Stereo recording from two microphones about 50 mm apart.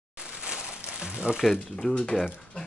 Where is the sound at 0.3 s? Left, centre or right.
Centre.